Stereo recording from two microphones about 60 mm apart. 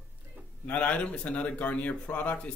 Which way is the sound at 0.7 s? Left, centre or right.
Left.